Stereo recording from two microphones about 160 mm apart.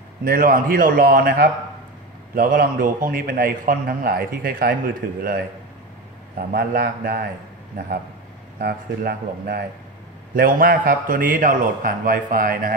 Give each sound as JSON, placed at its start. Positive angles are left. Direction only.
{"t": 0.2, "sound": "a man's voice", "side_deg": -65}
{"t": 8.5, "sound": "a man's voice", "side_deg": -80}